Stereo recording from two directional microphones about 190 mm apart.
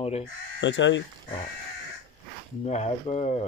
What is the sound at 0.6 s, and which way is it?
Speech, 70° left (ahead or behind).